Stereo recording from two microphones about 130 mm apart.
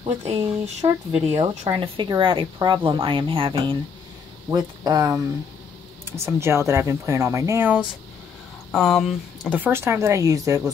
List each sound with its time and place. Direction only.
0.0 s speech: 55° right (ahead or behind)
4.5 s speech: 30° right (ahead or behind)
8.7 s speech: centre (ahead or behind); by 10.6 s 25° right (ahead or behind)